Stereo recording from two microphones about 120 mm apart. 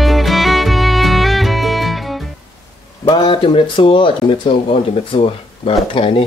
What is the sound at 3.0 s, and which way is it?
Speech, 45° left (ahead or behind).